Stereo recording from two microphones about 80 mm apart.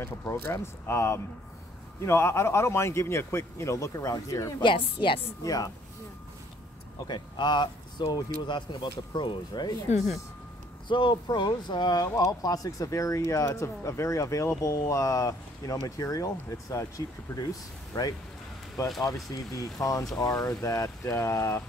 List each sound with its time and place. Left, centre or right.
0.0 s a man's voice: left
4.6 s a woman's voice: left
5.4 s speech: left
7.1 s speech: left
10.9 s a man's voice: left
19.3 s a man's voice: left